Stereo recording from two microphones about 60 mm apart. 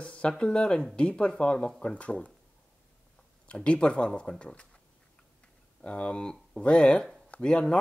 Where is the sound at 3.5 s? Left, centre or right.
Centre.